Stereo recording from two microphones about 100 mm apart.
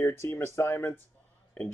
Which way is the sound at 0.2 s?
25° left (ahead or behind).